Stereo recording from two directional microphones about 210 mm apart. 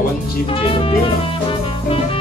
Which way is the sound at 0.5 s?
25° left (ahead or behind).